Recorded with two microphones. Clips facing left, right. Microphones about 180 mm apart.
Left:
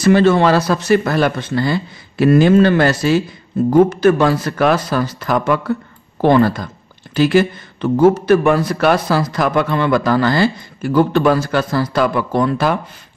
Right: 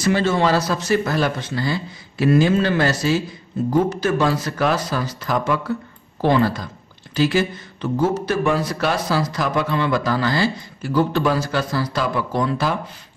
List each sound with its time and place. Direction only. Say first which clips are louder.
0.0 s speech: left 7 dB; 60° left (ahead or behind)